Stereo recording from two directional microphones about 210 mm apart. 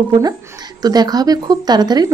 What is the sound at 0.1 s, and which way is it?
Speech, 20° right (ahead or behind).